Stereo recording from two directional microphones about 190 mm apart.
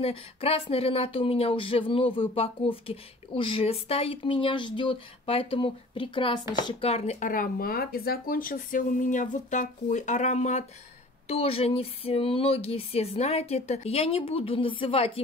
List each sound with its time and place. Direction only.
0.0 s speech: 30° left (ahead or behind)